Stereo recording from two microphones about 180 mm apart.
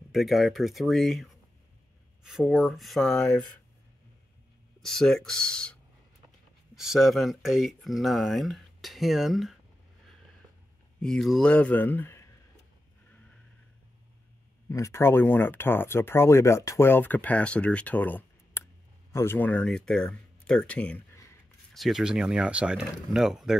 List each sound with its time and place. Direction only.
0.1 s speech: centre (ahead or behind)
4.7 s speech: centre (ahead or behind)
11.0 s speech: 5° left (ahead or behind)
14.7 s speech: 15° left (ahead or behind)
21.7 s speech: centre (ahead or behind)